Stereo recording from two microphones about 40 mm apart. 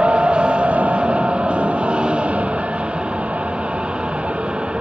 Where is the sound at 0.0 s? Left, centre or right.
Right.